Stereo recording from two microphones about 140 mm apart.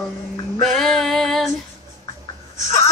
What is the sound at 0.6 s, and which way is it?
Female singing, centre (ahead or behind).